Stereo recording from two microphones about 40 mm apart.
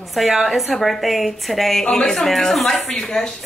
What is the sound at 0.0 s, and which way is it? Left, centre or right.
A woman's voice, centre.